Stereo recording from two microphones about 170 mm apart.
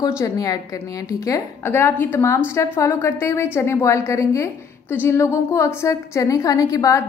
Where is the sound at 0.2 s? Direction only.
20° left (ahead or behind).